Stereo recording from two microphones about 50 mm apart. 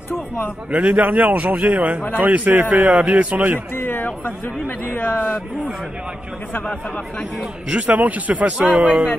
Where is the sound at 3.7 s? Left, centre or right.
Left.